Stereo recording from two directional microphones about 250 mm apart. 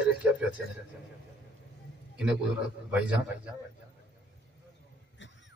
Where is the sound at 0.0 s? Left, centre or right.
Centre.